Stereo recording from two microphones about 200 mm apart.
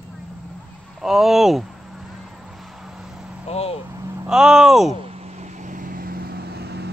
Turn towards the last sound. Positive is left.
turn(degrees=-55)  # may be behind; listen again after turning